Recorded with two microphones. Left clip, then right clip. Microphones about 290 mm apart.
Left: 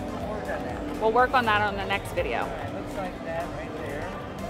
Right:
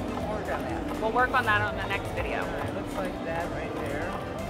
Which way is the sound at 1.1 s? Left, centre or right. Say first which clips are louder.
Left 2 dB; left.